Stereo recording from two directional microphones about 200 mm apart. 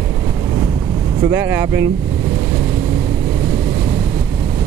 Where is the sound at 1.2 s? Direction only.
10° right (ahead or behind).